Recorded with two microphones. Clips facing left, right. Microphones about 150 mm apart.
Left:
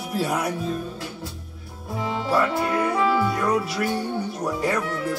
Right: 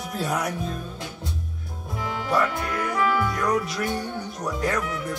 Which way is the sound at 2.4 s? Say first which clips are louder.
Left 4 dB; 25° left (ahead or behind).